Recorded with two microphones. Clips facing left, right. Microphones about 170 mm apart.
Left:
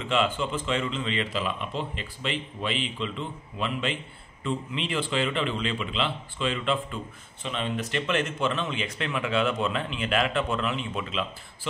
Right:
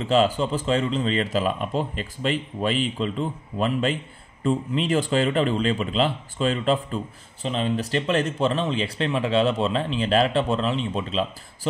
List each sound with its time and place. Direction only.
0.0 s speech: 35° right (ahead or behind)